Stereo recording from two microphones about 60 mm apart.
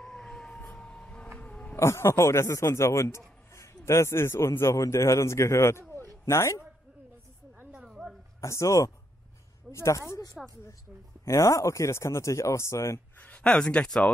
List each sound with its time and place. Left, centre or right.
0.0 s emergency vehicle: centre
0.7 s music: centre
1.4 s a sound: left
1.8 s a man's voice: left
7.9 s a sound: centre
8.4 s speech: left
13.2 s speech: centre